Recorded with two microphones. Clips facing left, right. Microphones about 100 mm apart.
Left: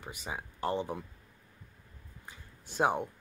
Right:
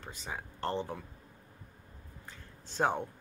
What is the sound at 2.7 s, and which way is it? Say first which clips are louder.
Speech: left 2 dB; 15° left (ahead or behind).